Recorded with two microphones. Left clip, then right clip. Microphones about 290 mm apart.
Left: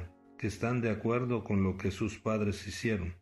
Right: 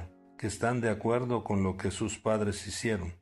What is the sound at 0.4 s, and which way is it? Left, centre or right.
Speech, right.